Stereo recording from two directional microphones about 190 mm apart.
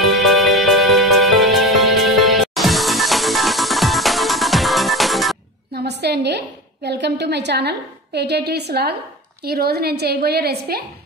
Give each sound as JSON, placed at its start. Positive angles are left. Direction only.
{"t": 0.0, "sound": "music", "side_deg": 0}
{"t": 5.9, "sound": "a woman's voice", "side_deg": -60}